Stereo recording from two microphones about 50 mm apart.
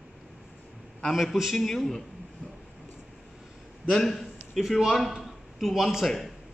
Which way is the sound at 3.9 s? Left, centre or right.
Centre.